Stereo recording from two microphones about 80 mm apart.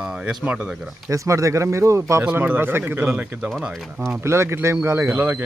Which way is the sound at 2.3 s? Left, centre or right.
Right.